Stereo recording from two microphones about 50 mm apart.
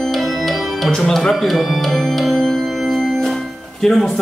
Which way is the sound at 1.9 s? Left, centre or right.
Centre.